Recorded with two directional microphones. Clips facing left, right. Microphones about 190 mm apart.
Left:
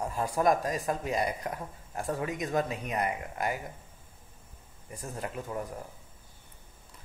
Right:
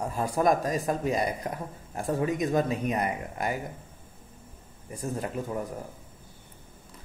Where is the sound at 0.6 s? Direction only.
30° right (ahead or behind).